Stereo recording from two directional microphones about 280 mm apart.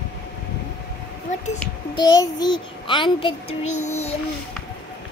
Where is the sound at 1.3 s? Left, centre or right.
Left.